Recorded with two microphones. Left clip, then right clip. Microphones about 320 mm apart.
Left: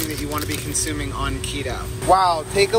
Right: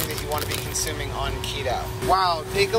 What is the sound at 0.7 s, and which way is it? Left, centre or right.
Speech, centre.